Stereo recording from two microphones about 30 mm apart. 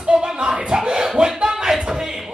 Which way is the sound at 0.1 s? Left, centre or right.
Right.